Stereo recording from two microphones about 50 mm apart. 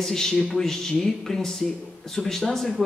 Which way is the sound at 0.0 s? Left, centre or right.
Centre.